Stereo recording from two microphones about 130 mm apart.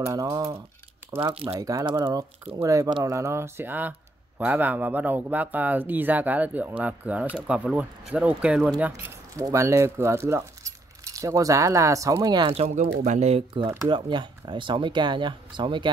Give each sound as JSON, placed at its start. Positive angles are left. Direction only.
{"t": 0.0, "sound": "speech", "side_deg": -25}
{"t": 9.0, "sound": "speech", "side_deg": -25}
{"t": 12.5, "sound": "speech", "side_deg": -60}
{"t": 13.8, "sound": "speech", "side_deg": -40}